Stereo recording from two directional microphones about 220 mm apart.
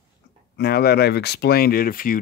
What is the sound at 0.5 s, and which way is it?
Speech, 45° left (ahead or behind).